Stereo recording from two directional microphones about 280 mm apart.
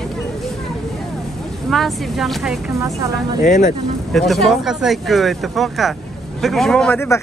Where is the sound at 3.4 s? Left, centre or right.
Left.